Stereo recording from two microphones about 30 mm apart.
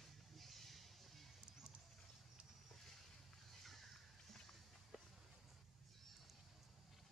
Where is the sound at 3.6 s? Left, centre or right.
Centre.